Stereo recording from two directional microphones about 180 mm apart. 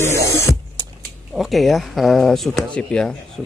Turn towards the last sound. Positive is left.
turn(degrees=5)  # may be behind; listen again after turning